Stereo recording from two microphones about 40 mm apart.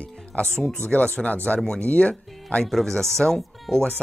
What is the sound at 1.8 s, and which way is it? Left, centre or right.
Speech, left.